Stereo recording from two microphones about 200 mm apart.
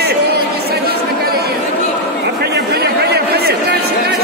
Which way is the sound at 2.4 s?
55° right (ahead or behind).